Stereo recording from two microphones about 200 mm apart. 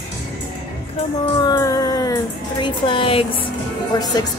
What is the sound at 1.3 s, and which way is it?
Music, 20° left (ahead or behind).